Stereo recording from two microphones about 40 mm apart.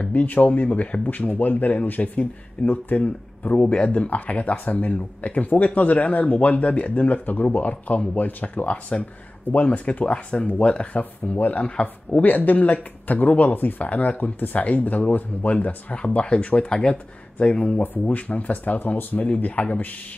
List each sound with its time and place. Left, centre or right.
0.0 s speech: left
11.6 s speech: left
12.2 s speech: left
16.6 s speech: left
18.0 s speech: left